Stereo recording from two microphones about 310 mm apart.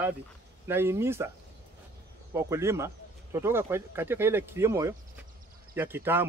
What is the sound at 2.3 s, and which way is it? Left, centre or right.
Speech, centre.